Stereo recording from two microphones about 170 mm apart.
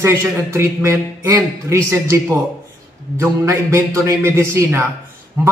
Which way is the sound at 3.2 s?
15° right (ahead or behind).